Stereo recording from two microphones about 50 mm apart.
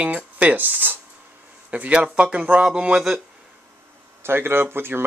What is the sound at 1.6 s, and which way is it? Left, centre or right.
Speech, right.